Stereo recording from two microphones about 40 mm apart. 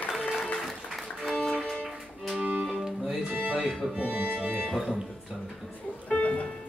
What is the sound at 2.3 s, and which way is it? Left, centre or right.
Music, right.